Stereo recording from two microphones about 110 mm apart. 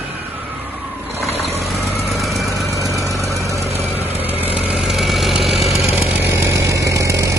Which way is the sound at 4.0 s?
15° right (ahead or behind).